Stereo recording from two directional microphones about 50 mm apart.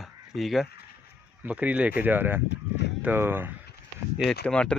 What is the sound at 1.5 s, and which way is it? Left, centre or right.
Speech, right.